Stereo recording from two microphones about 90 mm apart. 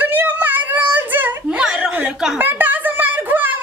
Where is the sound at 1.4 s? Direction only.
10° right (ahead or behind).